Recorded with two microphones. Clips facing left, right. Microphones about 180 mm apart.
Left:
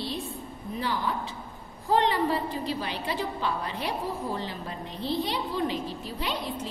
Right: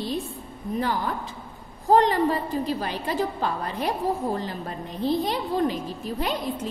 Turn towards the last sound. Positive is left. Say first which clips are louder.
# right 5 dB
turn(degrees=-45)  # may be behind; listen again after turning